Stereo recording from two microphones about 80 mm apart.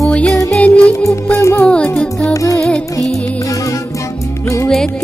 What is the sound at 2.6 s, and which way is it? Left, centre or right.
Music, centre.